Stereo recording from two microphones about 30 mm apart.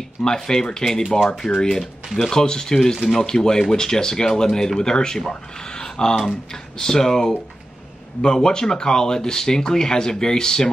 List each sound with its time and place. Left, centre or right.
0.2 s speech: left